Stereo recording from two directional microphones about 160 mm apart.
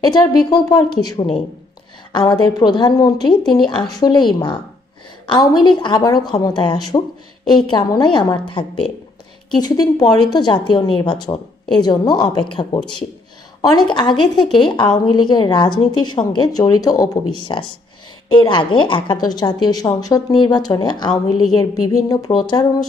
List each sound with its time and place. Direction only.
0.0 s a woman's voice: 25° left (ahead or behind)